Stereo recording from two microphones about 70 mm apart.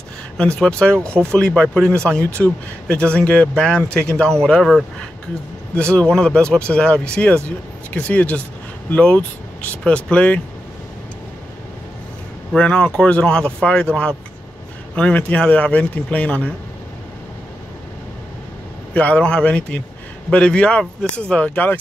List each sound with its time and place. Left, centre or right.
0.4 s speech: centre
5.9 s speech: centre
12.5 s speech: centre
18.9 s speech: centre